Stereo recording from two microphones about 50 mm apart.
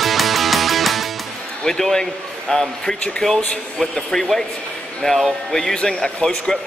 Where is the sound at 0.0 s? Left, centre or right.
Centre.